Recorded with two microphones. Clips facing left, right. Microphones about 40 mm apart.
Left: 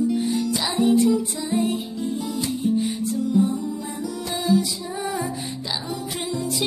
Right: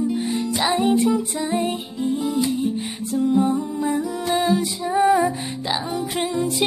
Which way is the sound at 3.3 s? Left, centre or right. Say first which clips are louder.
Right 2 dB; right.